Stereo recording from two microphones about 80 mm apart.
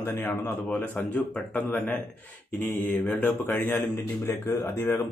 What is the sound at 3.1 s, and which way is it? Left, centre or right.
Speech, left.